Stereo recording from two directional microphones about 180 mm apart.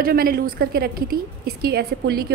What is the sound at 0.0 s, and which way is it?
A woman's voice, 55° right (ahead or behind).